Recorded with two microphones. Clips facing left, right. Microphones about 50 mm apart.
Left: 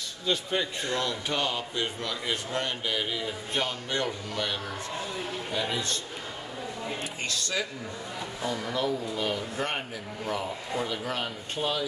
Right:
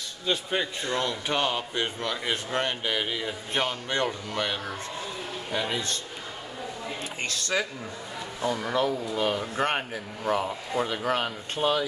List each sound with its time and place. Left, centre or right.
0.3 s a man's voice: centre; by 4.5 s right
5.5 s a man's voice: right
7.2 s speech: right